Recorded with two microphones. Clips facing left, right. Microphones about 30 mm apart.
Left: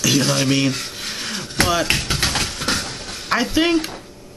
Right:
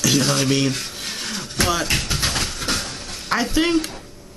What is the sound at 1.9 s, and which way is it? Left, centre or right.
Speech, left.